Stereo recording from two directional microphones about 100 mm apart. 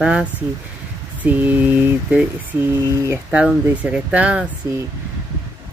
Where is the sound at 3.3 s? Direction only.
15° right (ahead or behind).